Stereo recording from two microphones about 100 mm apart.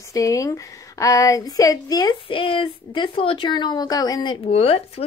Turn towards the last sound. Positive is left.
turn(degrees=85)